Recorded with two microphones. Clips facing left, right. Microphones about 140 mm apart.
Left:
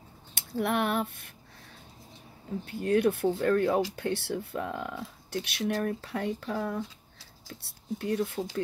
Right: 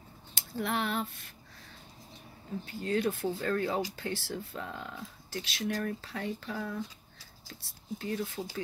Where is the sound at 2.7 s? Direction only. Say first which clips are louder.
Left 6 dB; 60° left (ahead or behind).